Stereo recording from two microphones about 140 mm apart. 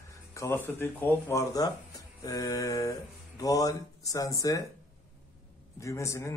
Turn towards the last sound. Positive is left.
turn(degrees=20)  # may be behind; listen again after turning